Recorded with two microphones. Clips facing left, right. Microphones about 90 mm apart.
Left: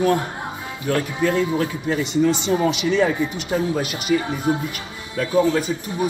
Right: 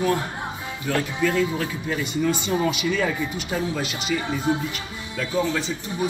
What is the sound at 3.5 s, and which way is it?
Speech, 45° left (ahead or behind).